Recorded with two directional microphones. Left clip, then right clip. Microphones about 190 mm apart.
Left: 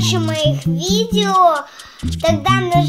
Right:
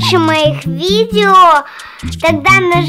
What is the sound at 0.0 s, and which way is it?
A child's voice, 40° right (ahead or behind).